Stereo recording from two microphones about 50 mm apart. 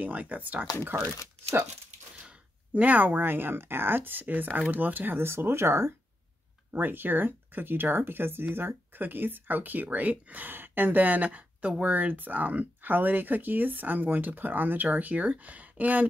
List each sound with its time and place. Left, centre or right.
0.0 s speech: right
2.7 s speech: right
6.7 s speech: right